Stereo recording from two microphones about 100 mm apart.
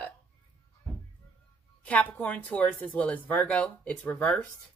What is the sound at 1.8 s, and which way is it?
Speech, 15° left (ahead or behind).